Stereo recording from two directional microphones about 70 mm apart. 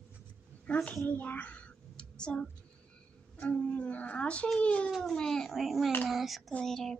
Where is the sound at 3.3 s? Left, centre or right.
Centre.